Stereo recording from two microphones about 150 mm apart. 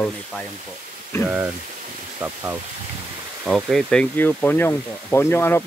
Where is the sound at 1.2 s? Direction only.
15° right (ahead or behind).